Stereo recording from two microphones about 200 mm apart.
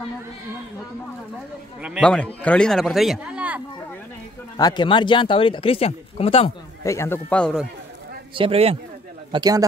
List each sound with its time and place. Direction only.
1.8 s a man's voice: 5° right (ahead or behind)
4.6 s speech: 20° left (ahead or behind)
6.8 s speech: 15° left (ahead or behind)
8.4 s speech: 30° right (ahead or behind)
9.3 s speech: 20° right (ahead or behind)